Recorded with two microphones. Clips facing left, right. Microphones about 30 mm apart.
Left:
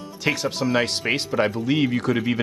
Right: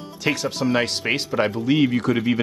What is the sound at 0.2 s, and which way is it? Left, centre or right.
Speech, centre.